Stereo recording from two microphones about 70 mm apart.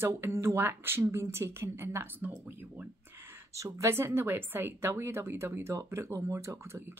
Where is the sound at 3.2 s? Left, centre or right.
Right.